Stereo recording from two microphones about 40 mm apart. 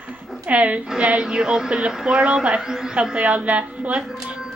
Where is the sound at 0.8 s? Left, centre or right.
Right.